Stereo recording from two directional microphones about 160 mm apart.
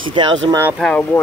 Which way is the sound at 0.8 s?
5° left (ahead or behind).